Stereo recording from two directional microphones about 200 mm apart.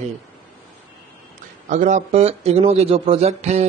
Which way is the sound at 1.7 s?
40° right (ahead or behind).